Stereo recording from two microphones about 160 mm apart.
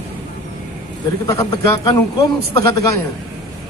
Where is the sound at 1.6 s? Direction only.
20° left (ahead or behind).